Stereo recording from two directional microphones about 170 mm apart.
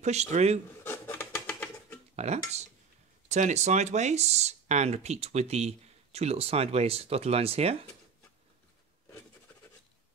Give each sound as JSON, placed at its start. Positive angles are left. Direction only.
{"t": 0.0, "sound": "speech", "side_deg": -40}
{"t": 0.8, "sound": "filing", "side_deg": 15}
{"t": 2.1, "sound": "speech", "side_deg": -40}